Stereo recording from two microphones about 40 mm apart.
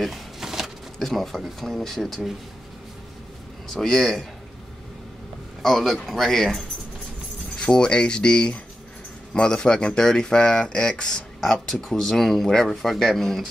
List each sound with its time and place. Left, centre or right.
0.0 s a sound: centre
0.9 s speech: centre
3.6 s speech: centre
5.6 s speech: centre
11.4 s speech: centre